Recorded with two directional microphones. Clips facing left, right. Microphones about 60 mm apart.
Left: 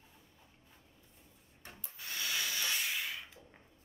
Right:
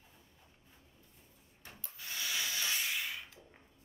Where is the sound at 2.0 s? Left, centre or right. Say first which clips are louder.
Left 1 dB; centre.